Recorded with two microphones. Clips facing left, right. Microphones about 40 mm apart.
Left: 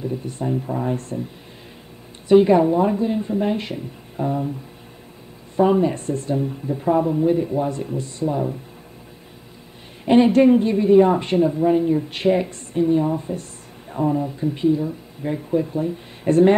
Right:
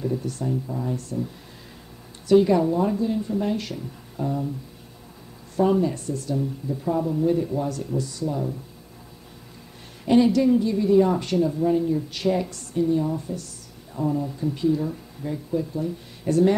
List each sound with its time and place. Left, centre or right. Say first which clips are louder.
0.1 s a woman's voice: left 2 dB; left
2.2 s speech: left 4 dB; left
5.6 s speech: left 4 dB; left
10.0 s a woman's voice: left 4 dB; left